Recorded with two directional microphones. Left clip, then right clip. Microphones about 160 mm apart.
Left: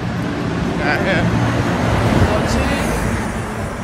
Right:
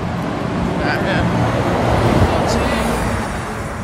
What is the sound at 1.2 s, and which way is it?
Vehicle, 70° right (ahead or behind).